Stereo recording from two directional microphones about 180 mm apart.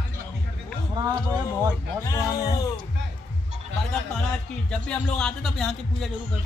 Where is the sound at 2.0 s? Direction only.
15° left (ahead or behind).